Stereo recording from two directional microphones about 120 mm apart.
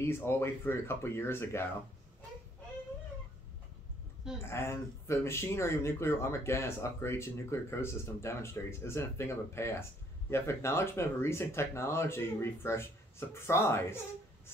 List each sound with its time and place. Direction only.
0.0 s speech: 20° left (ahead or behind)
4.5 s speech: 20° left (ahead or behind)